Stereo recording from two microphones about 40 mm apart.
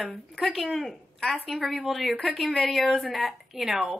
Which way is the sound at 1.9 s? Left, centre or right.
Centre.